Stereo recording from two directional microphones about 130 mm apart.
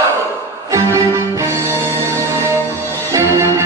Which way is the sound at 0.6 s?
25° right (ahead or behind).